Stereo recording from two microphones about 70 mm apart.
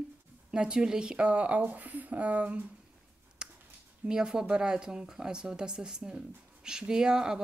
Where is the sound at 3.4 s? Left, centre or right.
Centre.